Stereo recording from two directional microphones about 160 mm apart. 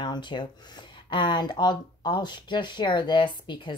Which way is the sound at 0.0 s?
30° left (ahead or behind).